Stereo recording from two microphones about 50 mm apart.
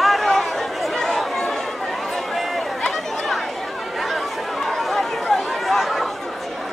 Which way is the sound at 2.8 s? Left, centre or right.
Centre.